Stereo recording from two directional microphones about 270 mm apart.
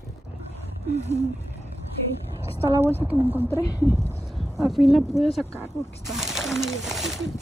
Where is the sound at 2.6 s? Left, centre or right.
Centre.